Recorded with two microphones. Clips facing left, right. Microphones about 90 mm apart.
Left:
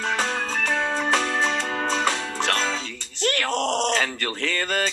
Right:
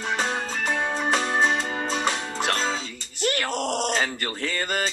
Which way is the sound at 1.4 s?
65° left (ahead or behind).